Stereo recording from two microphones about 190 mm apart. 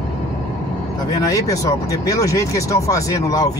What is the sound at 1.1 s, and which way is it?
Speech, 20° left (ahead or behind).